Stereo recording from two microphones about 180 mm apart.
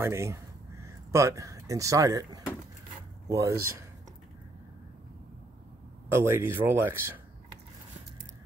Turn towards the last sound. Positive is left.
turn(degrees=-10)  # may be behind; listen again after turning